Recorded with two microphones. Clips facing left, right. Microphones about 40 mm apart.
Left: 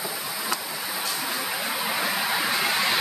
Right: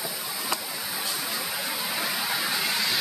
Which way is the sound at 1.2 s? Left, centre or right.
Centre.